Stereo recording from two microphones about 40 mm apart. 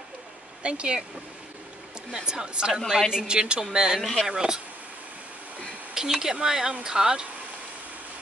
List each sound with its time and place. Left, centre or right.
0.6 s speech: right
2.1 s a woman's voice: centre
4.0 s speech: centre
4.3 s speech: centre
5.9 s speech: centre